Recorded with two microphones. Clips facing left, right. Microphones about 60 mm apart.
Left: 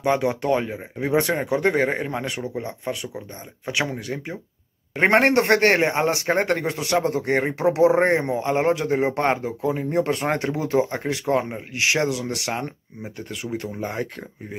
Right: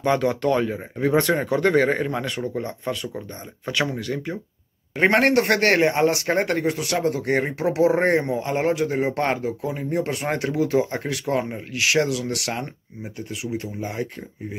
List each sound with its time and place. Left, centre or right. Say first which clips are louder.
0.0 s speech: right 1 dB; centre
4.9 s a man's voice: left 1 dB; left
8.2 s speech: left 1 dB; left
13.3 s speech: even; left